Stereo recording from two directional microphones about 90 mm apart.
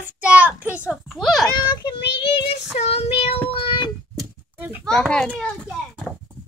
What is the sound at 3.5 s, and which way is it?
Child singing, 75° left (ahead or behind).